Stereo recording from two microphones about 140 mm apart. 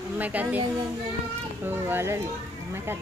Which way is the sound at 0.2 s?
10° right (ahead or behind).